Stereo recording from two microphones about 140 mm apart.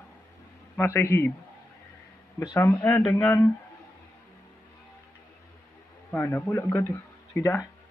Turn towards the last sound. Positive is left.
turn(degrees=20)  # may be behind; listen again after turning